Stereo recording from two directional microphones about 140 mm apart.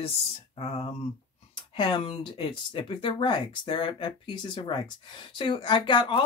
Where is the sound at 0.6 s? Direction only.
45° left (ahead or behind).